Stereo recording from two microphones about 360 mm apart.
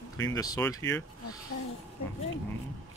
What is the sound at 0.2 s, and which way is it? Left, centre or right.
Speech, centre.